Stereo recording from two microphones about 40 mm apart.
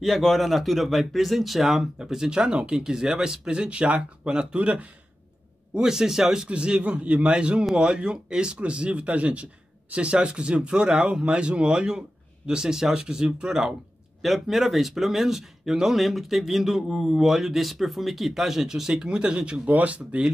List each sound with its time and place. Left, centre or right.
0.0 s speech: centre; by 4.6 s right
4.6 s speech: right
5.8 s speech: centre
6.5 s speech: right
14.2 s speech: centre; by 19.7 s right
19.7 s speech: right